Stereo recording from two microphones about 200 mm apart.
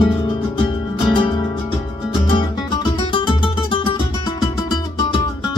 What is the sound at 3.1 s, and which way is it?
Music, 25° left (ahead or behind).